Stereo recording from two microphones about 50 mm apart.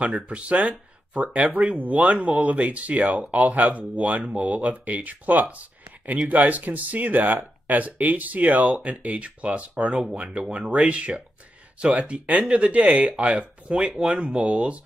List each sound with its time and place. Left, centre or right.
0.3 s speech: right; by 14.5 s centre
14.5 s speech: right